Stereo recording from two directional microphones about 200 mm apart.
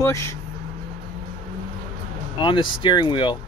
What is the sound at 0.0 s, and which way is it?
Speech, 15° left (ahead or behind).